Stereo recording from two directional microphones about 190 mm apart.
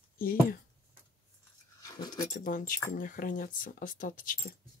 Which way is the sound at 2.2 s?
45° left (ahead or behind).